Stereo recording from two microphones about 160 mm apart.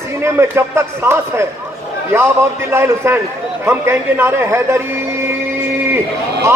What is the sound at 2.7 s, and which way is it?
A man's voice, 15° right (ahead or behind).